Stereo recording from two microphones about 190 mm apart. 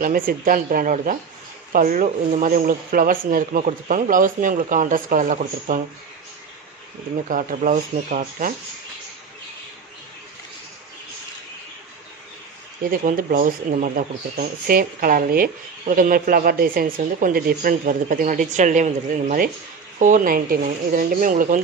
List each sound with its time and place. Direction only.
0.0 s speech: 50° right (ahead or behind)
7.2 s speech: 45° right (ahead or behind)
12.9 s speech: 45° right (ahead or behind)